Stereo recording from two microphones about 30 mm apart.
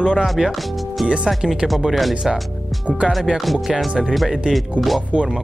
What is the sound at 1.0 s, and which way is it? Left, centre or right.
Speech, right.